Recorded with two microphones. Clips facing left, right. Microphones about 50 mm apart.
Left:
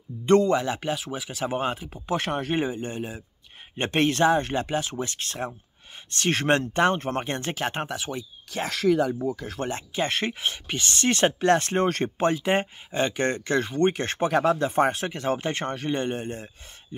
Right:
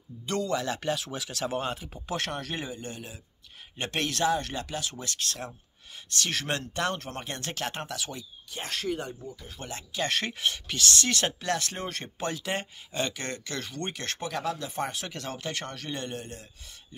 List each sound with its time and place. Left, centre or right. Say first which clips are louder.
0.2 s speech: left 10 dB; left
0.7 s speech: left 2 dB; centre; by 7.4 s left
7.4 s speech: left 5 dB; centre
8.5 s speech: left 8 dB; left
9.6 s speech: left 3 dB; left
10.0 s speech: left 1 dB; centre; by 12.1 s left
12.2 s speech: left 8 dB; left